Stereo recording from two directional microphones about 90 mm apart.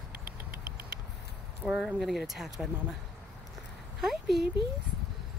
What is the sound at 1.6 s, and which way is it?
Speech, 5° right (ahead or behind).